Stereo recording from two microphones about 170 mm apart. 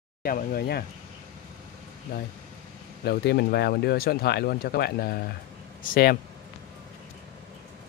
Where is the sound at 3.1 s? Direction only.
70° left (ahead or behind).